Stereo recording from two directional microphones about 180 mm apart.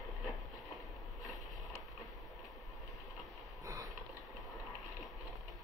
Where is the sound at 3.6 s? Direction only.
20° right (ahead or behind).